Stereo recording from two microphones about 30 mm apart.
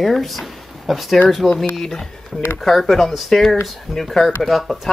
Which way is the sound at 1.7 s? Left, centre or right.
Centre.